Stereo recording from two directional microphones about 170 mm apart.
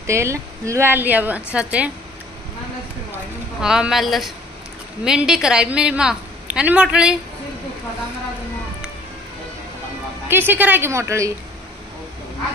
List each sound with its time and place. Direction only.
0.0 s a woman's voice: 15° right (ahead or behind)
3.6 s a woman's voice: 5° right (ahead or behind)
10.2 s a woman's voice: 10° right (ahead or behind)